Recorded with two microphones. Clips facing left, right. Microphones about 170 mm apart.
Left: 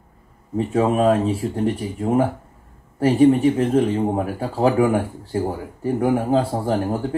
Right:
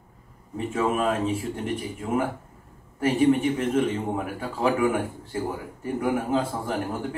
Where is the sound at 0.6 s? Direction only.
40° left (ahead or behind).